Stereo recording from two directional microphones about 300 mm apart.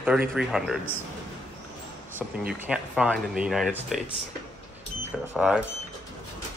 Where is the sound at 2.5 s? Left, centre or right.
Centre.